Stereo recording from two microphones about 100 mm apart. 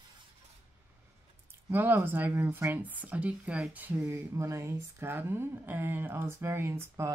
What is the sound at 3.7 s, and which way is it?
Speech, 20° right (ahead or behind).